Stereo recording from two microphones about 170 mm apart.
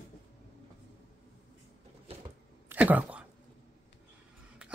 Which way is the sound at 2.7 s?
10° right (ahead or behind).